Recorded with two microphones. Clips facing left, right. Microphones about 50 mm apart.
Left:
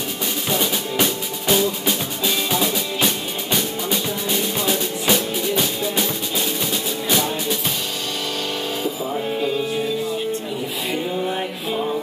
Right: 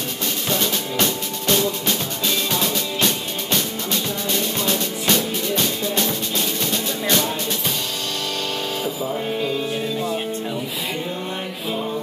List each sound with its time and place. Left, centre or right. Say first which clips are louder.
0.5 s music: left 1 dB; centre